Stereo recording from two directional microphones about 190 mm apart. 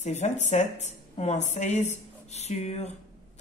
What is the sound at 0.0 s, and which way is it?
A woman's voice, 35° left (ahead or behind).